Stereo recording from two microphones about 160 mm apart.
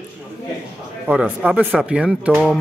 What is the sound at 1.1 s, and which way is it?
Speech, 5° right (ahead or behind).